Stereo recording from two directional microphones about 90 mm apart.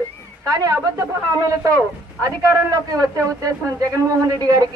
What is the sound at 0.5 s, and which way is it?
A man's voice, 40° right (ahead or behind).